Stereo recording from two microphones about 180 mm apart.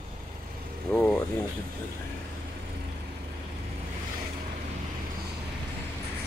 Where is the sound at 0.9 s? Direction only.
10° left (ahead or behind).